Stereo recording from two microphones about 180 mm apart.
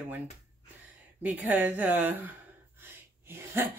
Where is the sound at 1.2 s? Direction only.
10° right (ahead or behind).